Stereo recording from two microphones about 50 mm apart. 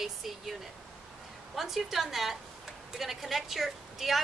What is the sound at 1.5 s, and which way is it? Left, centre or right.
A woman's voice, centre.